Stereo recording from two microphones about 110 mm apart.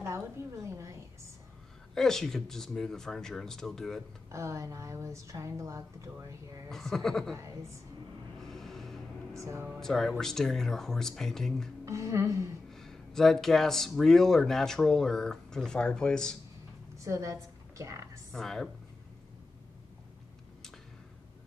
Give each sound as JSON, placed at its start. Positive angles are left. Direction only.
{"t": 0.7, "sound": "a sound", "side_deg": -25}
{"t": 2.0, "sound": "speech", "side_deg": 5}
{"t": 4.3, "sound": "a woman's voice", "side_deg": -25}
{"t": 6.7, "sound": "speech", "side_deg": 5}
{"t": 7.3, "sound": "a woman's voice", "side_deg": -25}
{"t": 8.4, "sound": "a sound", "side_deg": 5}
{"t": 9.4, "sound": "a woman's voice", "side_deg": -25}
{"t": 9.7, "sound": "speech", "side_deg": 5}
{"t": 11.8, "sound": "a woman's voice", "side_deg": -30}
{"t": 12.7, "sound": "speech", "side_deg": 5}
{"t": 17.0, "sound": "a woman's voice", "side_deg": -30}
{"t": 18.3, "sound": "speech", "side_deg": 5}